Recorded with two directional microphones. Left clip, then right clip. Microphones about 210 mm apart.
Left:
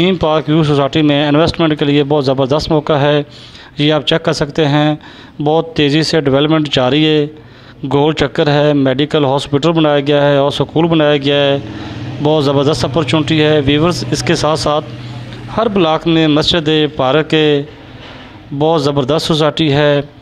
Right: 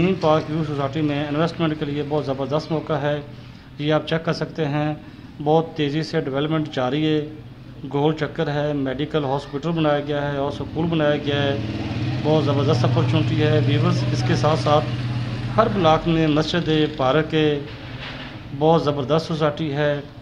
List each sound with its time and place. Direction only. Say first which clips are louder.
0.0 s speech: left 6 dB; 40° left (ahead or behind)
18.6 s speech: left 6 dB; 35° left (ahead or behind)